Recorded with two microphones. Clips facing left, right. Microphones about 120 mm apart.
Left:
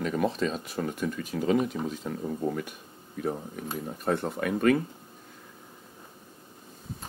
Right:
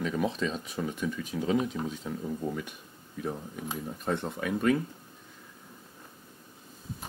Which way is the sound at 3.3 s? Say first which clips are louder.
Left 2 dB; 10° left (ahead or behind).